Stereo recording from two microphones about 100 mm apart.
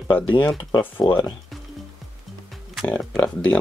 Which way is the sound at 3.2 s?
15° left (ahead or behind).